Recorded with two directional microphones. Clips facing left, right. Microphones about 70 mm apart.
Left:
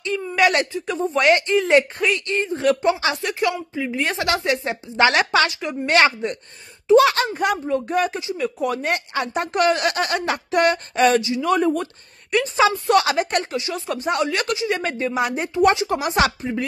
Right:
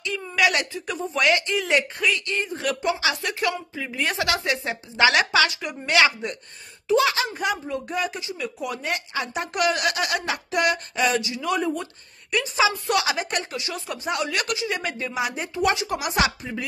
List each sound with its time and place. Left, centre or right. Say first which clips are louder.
0.0 s a sound: left 4 dB; left
0.7 s speech: left 5 dB; left
7.0 s a woman's voice: left 5 dB; left
7.7 s speech: left 6 dB; left
8.5 s speech: left 6 dB; left
9.1 s a woman's voice: left 4 dB; left
9.5 s speech: left 4 dB; left
12.5 s a woman's voice: left 5 dB; left